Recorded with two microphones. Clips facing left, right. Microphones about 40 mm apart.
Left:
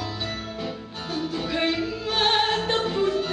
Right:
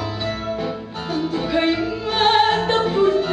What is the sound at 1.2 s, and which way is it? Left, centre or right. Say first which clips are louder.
Music: right 6 dB; centre.